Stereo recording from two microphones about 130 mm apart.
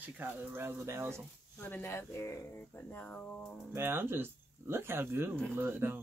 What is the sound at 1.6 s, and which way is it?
Speech, 15° left (ahead or behind).